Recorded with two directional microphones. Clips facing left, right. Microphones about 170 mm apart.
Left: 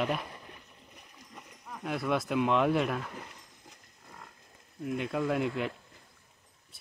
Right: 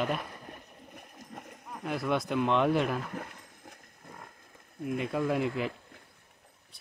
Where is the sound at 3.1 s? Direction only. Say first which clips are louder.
Right 5 dB; 55° right (ahead or behind).